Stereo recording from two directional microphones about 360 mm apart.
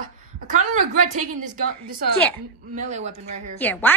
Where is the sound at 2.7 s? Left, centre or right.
Centre.